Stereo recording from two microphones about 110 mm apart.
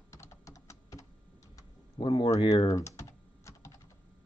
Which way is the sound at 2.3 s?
35° left (ahead or behind).